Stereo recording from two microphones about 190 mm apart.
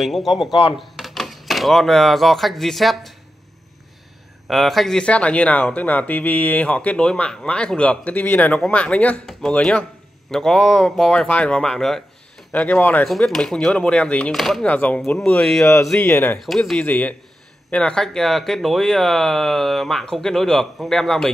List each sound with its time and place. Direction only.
0.0 s speech: centre (ahead or behind)
0.5 s speech: 25° left (ahead or behind)
0.7 s speech: centre (ahead or behind)
4.5 s speech: centre (ahead or behind)